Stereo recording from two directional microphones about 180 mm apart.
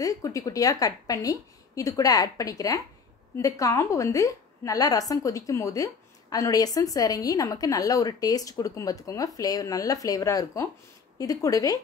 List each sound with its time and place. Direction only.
0.0 s a woman's voice: 20° left (ahead or behind)